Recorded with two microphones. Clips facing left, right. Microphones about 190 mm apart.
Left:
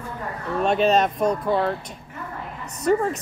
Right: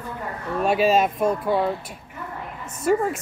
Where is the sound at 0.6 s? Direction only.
5° right (ahead or behind).